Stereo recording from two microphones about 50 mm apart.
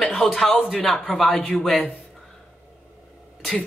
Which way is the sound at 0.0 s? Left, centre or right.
Centre.